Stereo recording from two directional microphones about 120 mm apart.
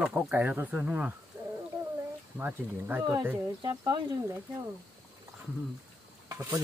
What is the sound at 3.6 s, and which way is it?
Speech, 35° right (ahead or behind).